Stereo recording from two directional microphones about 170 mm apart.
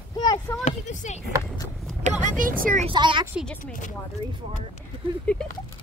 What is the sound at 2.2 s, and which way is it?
Speech, 55° right (ahead or behind).